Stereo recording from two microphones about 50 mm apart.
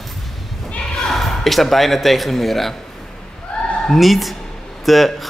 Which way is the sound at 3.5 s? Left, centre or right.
Left.